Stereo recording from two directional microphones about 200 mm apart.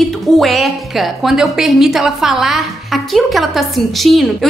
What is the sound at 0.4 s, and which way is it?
A woman's voice, centre (ahead or behind).